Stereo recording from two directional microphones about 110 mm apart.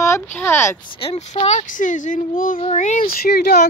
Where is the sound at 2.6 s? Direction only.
60° left (ahead or behind).